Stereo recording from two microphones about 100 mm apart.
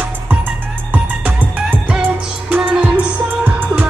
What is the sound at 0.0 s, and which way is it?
Music, 15° right (ahead or behind).